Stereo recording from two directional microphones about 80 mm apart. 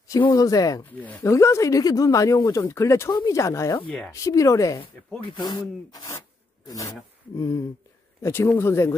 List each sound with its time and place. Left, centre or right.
0.3 s speech: left
0.9 s speech: left
1.2 s speech: left
5.4 s speech: left
7.3 s speech: left